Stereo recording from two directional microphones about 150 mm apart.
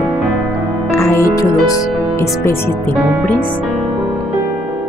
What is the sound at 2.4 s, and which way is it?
Speech, 15° left (ahead or behind).